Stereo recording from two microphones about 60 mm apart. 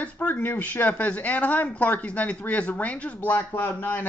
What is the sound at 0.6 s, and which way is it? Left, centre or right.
Speech, left.